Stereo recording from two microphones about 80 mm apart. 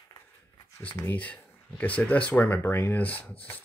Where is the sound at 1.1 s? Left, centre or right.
Centre.